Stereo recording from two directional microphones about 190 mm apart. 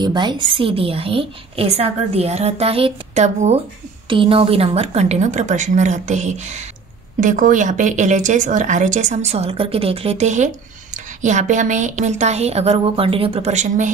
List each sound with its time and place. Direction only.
0.0 s a woman's voice: 25° right (ahead or behind); by 13.8 s 40° right (ahead or behind)